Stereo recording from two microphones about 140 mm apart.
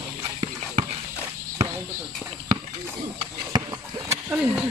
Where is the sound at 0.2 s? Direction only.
45° right (ahead or behind).